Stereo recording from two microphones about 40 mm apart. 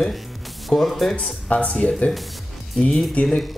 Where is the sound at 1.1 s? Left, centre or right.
Left.